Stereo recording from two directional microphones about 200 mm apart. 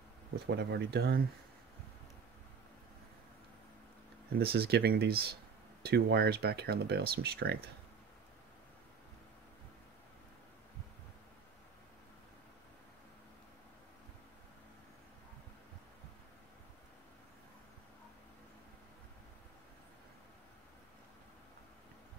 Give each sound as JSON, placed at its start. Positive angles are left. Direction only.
{"t": 0.6, "sound": "speech", "side_deg": -55}
{"t": 4.4, "sound": "speech", "side_deg": -50}